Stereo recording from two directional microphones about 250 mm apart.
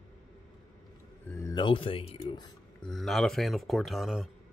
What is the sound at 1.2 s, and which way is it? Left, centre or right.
Speech, centre.